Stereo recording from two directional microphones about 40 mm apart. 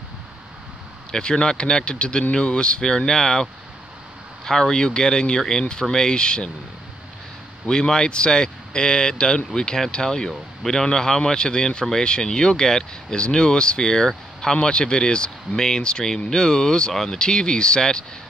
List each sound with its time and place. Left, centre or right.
1.1 s speech: left
4.5 s speech: centre
7.6 s speech: centre